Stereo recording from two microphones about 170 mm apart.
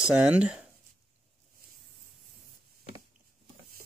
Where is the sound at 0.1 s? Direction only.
5° right (ahead or behind).